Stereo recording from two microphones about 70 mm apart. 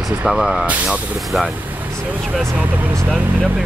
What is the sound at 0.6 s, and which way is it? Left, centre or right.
Speech, right.